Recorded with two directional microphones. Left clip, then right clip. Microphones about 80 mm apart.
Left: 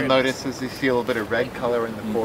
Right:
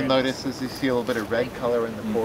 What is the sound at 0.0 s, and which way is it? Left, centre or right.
Speech, centre.